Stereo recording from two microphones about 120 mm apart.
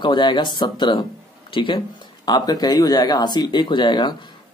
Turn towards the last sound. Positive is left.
turn(degrees=40)  # may be behind; listen again after turning